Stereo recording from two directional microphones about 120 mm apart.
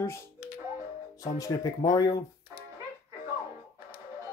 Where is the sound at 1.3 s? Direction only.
30° left (ahead or behind).